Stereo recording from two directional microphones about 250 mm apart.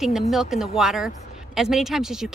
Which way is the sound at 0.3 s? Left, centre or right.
Centre.